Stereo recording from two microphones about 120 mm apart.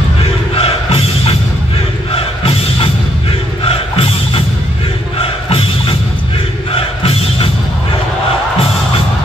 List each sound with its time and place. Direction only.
0.2 s music: 55° left (ahead or behind)